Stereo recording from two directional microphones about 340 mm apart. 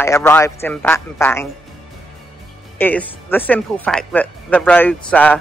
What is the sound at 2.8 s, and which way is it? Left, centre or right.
Speech, centre.